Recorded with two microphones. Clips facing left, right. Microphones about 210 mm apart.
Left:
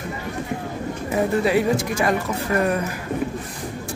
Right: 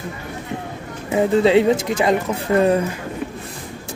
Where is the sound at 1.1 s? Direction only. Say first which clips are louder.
Right 5 dB; 25° right (ahead or behind).